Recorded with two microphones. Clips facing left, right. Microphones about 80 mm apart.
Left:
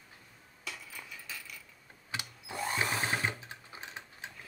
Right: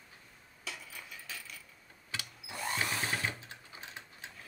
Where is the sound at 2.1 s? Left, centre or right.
Left.